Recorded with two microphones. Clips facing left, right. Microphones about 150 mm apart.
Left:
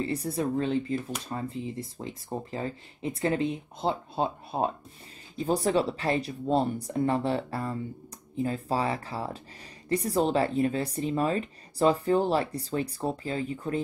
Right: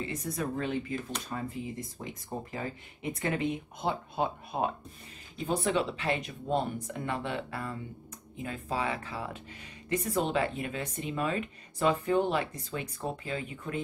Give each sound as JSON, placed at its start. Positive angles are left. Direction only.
{"t": 0.0, "sound": "speech", "side_deg": 35}